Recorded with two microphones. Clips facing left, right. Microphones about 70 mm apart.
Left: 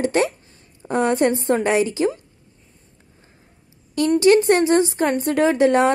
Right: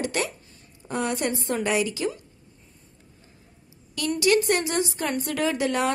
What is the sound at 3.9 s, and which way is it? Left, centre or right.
Speech, left.